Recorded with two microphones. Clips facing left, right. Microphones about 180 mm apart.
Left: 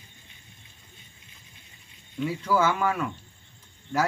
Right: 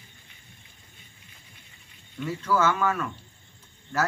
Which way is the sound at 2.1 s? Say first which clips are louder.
Left 1 dB; 15° left (ahead or behind).